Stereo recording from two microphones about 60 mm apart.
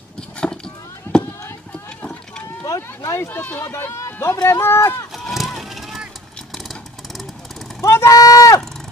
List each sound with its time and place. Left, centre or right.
1.1 s run: left
2.4 s boat: left
3.3 s speech: left
3.6 s speech: left
5.1 s a sound: centre
5.5 s vehicle: centre
7.8 s vehicle: left
8.1 s a sound: left